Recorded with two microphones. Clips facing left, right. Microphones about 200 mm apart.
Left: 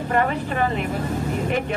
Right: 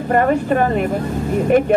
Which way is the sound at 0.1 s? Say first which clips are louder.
Right 8 dB; 50° right (ahead or behind).